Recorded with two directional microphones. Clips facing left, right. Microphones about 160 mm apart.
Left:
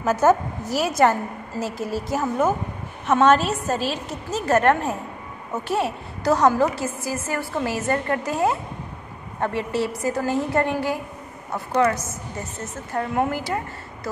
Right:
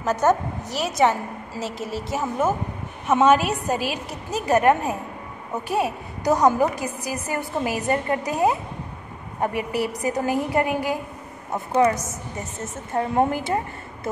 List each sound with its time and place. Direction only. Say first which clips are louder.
0.0 s a woman's voice: left 2 dB; 5° left (ahead or behind); by 13.6 s 20° right (ahead or behind)